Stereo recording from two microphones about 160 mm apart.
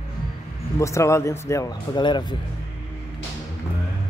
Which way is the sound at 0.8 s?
20° left (ahead or behind).